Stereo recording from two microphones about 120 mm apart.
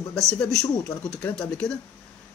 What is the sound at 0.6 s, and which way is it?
Speech, 25° left (ahead or behind).